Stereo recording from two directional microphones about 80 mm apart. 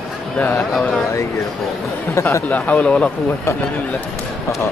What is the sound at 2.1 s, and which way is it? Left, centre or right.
Speech, left.